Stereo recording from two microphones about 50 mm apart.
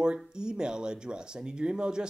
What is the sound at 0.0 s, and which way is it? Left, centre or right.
Speech, centre.